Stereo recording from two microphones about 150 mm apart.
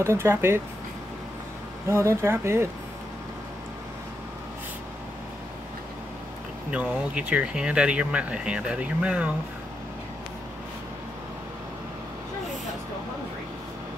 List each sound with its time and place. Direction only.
0.0 s speech: 15° right (ahead or behind)
1.9 s speech: 15° right (ahead or behind)
6.7 s speech: 10° right (ahead or behind)